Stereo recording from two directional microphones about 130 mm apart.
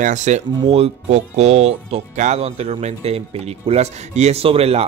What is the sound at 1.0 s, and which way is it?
Speech, 65° right (ahead or behind).